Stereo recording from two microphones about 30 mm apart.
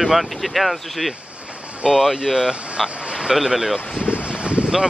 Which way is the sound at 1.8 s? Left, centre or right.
Right.